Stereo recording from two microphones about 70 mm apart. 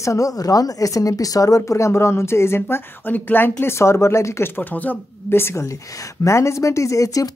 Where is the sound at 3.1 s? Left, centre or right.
Left.